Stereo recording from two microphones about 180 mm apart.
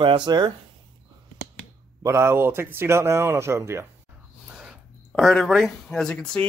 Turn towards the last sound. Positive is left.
turn(degrees=5)  # may be behind; listen again after turning